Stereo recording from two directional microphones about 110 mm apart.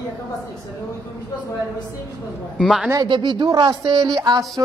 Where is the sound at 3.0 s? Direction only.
45° right (ahead or behind).